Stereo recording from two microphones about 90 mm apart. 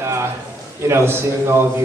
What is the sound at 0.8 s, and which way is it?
Speech, 25° right (ahead or behind).